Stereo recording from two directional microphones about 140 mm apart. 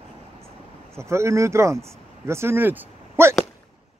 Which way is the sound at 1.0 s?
20° right (ahead or behind).